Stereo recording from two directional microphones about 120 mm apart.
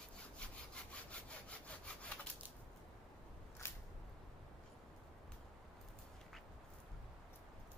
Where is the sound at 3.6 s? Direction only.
20° left (ahead or behind).